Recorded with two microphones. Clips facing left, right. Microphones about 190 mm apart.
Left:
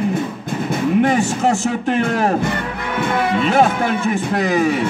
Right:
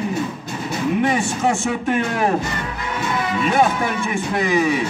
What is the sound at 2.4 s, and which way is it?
Music, 55° left (ahead or behind).